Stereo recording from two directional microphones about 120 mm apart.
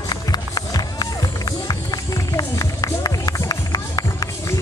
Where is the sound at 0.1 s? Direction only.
35° left (ahead or behind).